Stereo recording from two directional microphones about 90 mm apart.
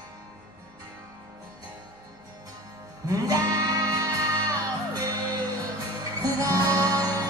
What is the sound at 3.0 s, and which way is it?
Music, 45° right (ahead or behind).